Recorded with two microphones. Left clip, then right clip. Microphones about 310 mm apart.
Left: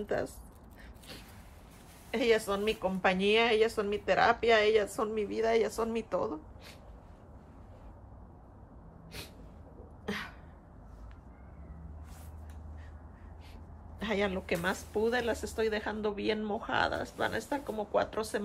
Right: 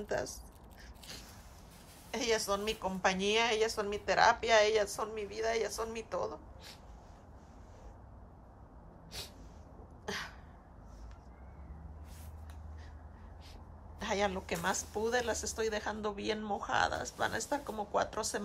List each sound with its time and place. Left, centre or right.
0.1 s speech: centre
2.0 s a woman's voice: centre
10.0 s a sound: centre
13.9 s speech: centre